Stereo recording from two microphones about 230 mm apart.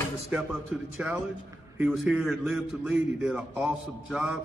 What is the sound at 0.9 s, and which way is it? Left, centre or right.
A man's voice, centre.